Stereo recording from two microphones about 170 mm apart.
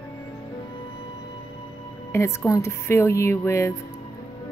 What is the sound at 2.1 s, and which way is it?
A woman's voice, 15° left (ahead or behind).